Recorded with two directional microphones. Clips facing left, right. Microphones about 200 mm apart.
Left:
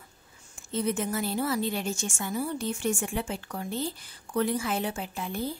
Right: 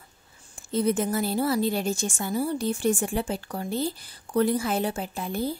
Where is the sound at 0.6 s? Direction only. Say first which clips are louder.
Right 5 dB; 35° right (ahead or behind).